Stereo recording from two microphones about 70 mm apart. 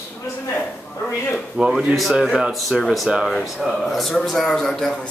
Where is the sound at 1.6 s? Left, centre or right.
Centre.